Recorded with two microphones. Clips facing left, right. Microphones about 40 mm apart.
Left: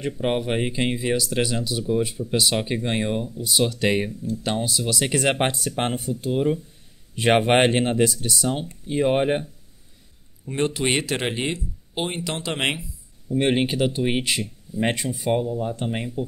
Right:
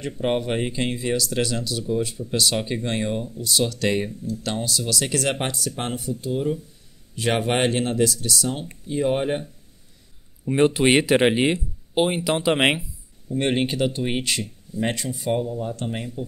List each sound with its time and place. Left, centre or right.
0.0 s speech: centre; by 9.4 s left
10.5 s speech: centre
13.3 s speech: centre
14.4 s speech: left